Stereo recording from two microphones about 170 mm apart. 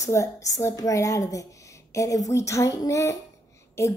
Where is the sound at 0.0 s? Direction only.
20° left (ahead or behind).